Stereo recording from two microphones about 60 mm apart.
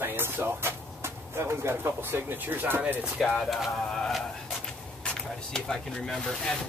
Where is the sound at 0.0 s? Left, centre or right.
Right.